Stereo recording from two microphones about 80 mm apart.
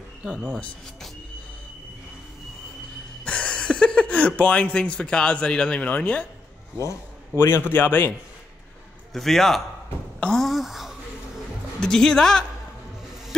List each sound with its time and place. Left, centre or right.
3.3 s speech: centre
7.3 s a man's voice: left
9.1 s speech: centre
10.2 s a sound: centre
11.8 s speech: centre